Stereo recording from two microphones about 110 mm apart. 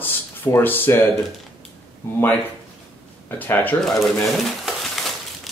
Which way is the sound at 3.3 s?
15° left (ahead or behind).